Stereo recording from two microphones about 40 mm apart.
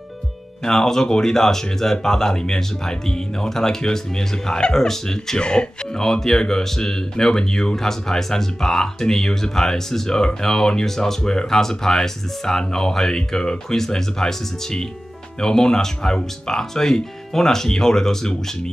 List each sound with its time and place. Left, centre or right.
0.7 s speech: centre
5.9 s speech: centre